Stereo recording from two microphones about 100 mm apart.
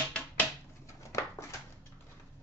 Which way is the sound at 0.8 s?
30° left (ahead or behind).